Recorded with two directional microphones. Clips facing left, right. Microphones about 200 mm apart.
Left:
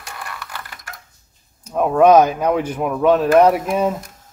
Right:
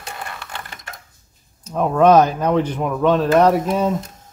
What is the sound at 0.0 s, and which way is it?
Sewing machine, 25° right (ahead or behind).